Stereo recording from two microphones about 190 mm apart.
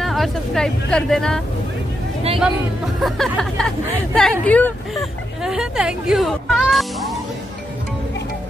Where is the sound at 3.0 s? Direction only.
Centre (ahead or behind).